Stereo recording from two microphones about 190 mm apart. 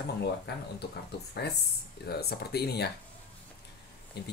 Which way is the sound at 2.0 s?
55° left (ahead or behind).